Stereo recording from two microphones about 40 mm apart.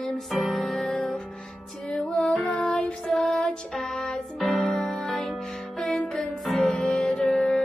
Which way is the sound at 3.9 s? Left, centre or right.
Left.